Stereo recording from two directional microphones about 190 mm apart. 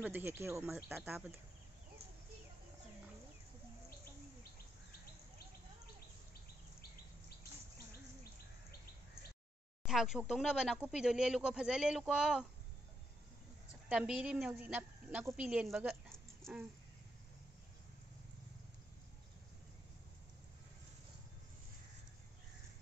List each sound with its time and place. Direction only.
0.0 s speech: 10° right (ahead or behind)
7.2 s insect: 55° left (ahead or behind)
9.8 s speech: centre (ahead or behind)
13.8 s a woman's voice: 5° right (ahead or behind)